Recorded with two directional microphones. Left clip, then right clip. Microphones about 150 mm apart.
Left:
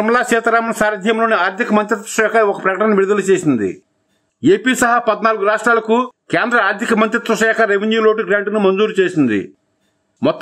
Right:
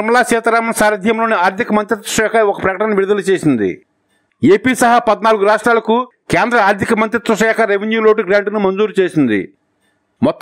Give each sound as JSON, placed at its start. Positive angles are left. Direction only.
{"t": 0.0, "sound": "speech", "side_deg": -35}